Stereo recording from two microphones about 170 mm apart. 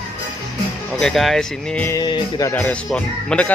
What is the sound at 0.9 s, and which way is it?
Speech, centre (ahead or behind).